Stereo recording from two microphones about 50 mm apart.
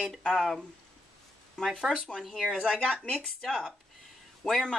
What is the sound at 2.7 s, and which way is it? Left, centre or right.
Speech, centre.